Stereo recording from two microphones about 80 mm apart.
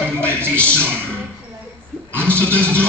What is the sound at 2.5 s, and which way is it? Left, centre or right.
Speech, right.